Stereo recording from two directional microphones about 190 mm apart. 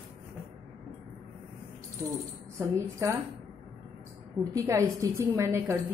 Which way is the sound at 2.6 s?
15° right (ahead or behind).